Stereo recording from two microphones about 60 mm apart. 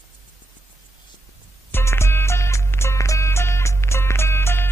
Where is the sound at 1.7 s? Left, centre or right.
Left.